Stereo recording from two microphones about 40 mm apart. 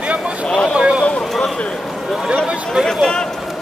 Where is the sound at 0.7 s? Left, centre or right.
Right.